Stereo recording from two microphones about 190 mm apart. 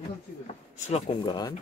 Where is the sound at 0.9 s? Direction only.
25° left (ahead or behind).